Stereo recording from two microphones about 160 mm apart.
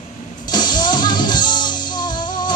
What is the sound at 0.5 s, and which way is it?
Music, 25° left (ahead or behind).